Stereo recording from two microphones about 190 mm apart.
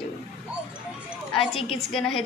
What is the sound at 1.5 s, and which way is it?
Speech, 30° left (ahead or behind).